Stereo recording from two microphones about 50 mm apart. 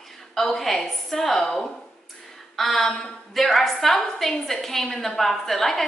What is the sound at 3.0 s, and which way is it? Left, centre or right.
A woman's voice, centre.